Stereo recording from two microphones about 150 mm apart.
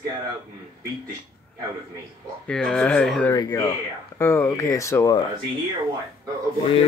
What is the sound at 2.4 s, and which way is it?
Speech, 5° left (ahead or behind).